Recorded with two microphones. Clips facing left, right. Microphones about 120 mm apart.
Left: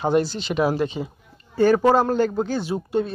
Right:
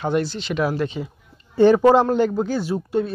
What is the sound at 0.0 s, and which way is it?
Speech, 35° left (ahead or behind).